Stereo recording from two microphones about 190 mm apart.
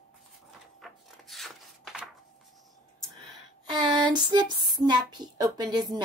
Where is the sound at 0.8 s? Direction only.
Centre (ahead or behind).